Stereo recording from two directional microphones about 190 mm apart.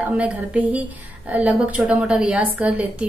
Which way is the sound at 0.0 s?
10° right (ahead or behind).